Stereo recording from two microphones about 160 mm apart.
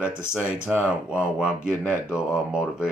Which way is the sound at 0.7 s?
5° right (ahead or behind).